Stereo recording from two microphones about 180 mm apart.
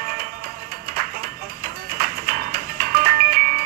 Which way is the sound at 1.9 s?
55° right (ahead or behind).